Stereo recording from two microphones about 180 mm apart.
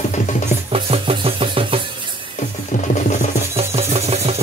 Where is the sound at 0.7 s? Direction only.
30° right (ahead or behind).